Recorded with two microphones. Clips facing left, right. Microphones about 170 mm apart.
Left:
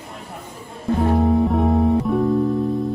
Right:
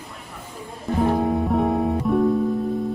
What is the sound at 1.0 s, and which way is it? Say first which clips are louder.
Music: left 3 dB; centre (ahead or behind).